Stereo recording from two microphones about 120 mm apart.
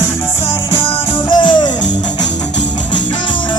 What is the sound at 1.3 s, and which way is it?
Music, 40° left (ahead or behind).